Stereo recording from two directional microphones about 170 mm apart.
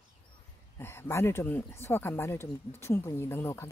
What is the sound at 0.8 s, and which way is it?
Speech, 15° left (ahead or behind).